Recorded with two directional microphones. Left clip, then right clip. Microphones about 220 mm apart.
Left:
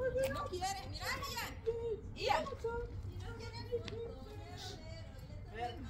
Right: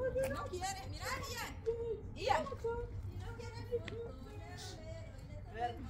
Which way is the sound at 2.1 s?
20° right (ahead or behind).